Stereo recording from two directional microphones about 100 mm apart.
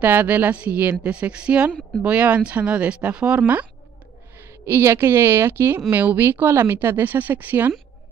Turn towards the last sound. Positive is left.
turn(degrees=-15)  # may be behind; listen again after turning